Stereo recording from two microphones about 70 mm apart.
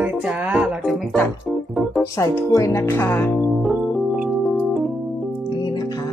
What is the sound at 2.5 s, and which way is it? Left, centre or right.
Speech, left.